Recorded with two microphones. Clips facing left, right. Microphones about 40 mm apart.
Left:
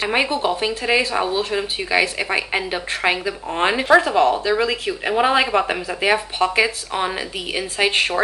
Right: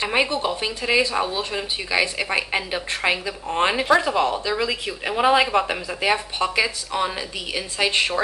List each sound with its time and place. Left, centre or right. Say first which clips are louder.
0.0 s a woman's voice: left 2 dB; centre